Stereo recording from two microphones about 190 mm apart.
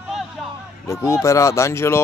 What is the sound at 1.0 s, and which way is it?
Speech, 15° left (ahead or behind).